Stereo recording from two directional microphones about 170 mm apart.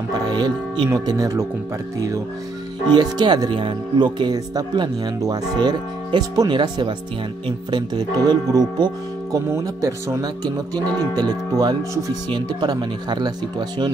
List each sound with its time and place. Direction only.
0.3 s speech: 25° right (ahead or behind)